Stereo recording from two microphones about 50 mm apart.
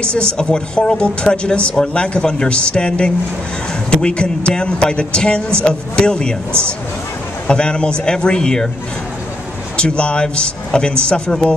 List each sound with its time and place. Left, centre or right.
0.0 s speech: left
7.4 s speech: centre
9.8 s speech: left